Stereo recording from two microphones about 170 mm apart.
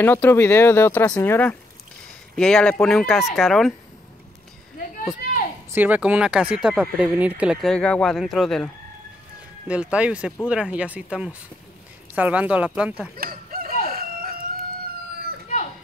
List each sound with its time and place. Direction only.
0.0 s speech: 10° left (ahead or behind)
5.7 s speech: 10° right (ahead or behind)
7.7 s speech: 5° left (ahead or behind)
9.7 s speech: 5° right (ahead or behind)
13.2 s a sound: 60° right (ahead or behind)